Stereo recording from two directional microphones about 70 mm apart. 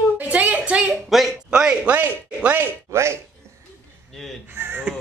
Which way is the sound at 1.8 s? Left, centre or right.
Right.